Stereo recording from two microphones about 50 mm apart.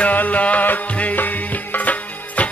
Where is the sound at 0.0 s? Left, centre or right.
Left.